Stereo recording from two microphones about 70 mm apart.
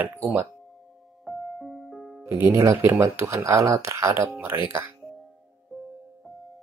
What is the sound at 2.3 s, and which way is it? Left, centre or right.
Speech, right.